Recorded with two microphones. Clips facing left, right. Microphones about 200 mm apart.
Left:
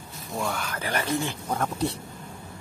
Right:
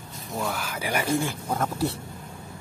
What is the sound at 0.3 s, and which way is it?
Speech, 5° right (ahead or behind).